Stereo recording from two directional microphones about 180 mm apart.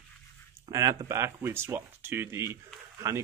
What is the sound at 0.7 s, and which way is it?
Speech, 20° right (ahead or behind).